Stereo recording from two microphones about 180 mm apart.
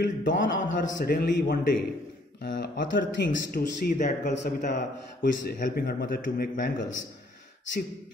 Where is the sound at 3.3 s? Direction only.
50° left (ahead or behind); by 4.6 s 70° left (ahead or behind).